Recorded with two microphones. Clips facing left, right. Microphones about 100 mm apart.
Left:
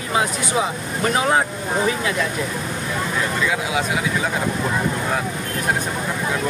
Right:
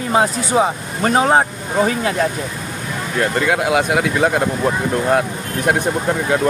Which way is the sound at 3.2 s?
65° right (ahead or behind).